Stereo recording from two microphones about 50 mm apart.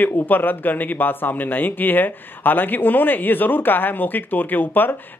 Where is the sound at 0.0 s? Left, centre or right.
Left.